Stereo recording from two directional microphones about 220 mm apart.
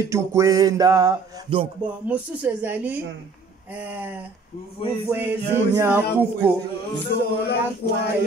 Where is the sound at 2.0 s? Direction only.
5° right (ahead or behind).